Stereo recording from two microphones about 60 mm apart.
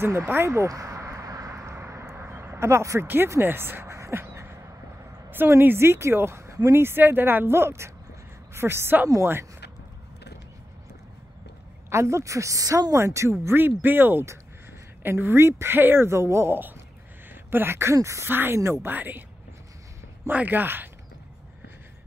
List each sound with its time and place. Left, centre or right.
0.0 s speech: right
0.7 s a sound: right
1.5 s a sound: right
3.3 s quack: right
5.6 s speech: right
6.7 s a woman's voice: right
11.9 s speech: right
13.6 s a woman's voice: right
17.3 s a sound: right
17.9 s speech: right
18.3 s a woman's voice: right
18.6 s speech: right
18.9 s a woman's voice: right
20.2 s a woman's voice: right